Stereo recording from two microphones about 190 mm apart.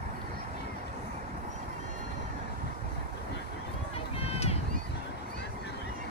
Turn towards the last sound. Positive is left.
turn(degrees=30)  # may be behind; listen again after turning